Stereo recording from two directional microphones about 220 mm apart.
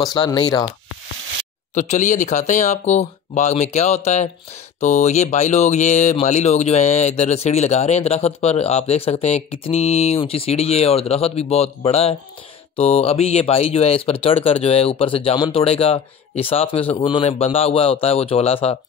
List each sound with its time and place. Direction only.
0.0 s speech: 15° left (ahead or behind)
1.8 s speech: 35° left (ahead or behind)